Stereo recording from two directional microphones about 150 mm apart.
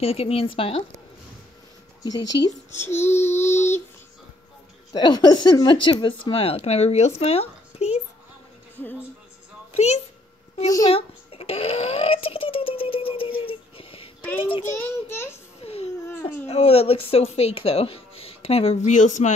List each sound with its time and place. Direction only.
0.0 s speech: 40° left (ahead or behind)
2.0 s speech: 30° left (ahead or behind)
2.8 s child singing: 15° left (ahead or behind)
4.9 s speech: 30° left (ahead or behind); by 8.0 s 45° left (ahead or behind)
9.7 s a woman's voice: 45° left (ahead or behind)
10.9 s a sound: 40° left (ahead or behind)
14.8 s child singing: 15° left (ahead or behind)
15.6 s a sound: 40° left (ahead or behind)
16.1 s a sound: 15° left (ahead or behind)
16.4 s speech: 45° left (ahead or behind)
18.9 s speech: 55° left (ahead or behind)